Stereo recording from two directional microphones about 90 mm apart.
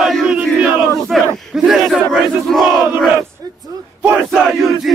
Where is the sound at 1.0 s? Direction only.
Centre (ahead or behind).